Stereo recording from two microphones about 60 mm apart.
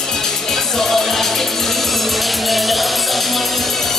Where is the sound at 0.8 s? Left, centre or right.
Centre.